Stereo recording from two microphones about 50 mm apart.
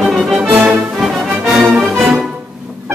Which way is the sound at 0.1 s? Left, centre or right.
Centre.